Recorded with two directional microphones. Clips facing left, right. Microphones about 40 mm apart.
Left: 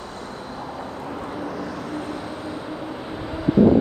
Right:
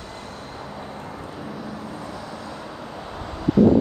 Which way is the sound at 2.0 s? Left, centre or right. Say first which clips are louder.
Left 4 dB; left.